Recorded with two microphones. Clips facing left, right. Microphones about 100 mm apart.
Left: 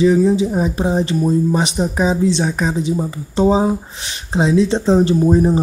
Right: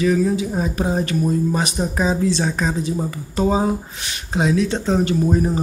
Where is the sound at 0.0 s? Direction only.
25° left (ahead or behind).